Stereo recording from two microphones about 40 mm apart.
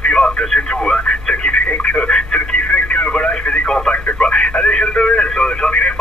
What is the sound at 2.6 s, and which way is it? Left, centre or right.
Radio, left.